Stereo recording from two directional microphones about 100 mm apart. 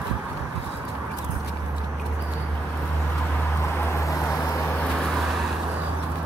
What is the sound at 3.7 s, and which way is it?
Vehicle, 30° left (ahead or behind).